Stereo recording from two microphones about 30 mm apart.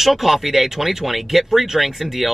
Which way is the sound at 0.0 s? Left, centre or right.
Centre.